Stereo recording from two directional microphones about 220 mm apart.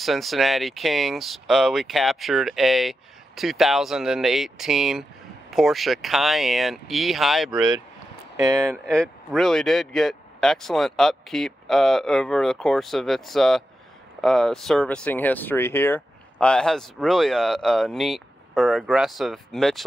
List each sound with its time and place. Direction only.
0.0 s speech: centre (ahead or behind)
8.4 s speech: 15° right (ahead or behind)
8.8 s speech: 5° left (ahead or behind)